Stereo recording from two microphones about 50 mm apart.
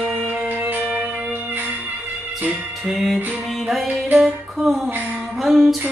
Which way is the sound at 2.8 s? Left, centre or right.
Centre.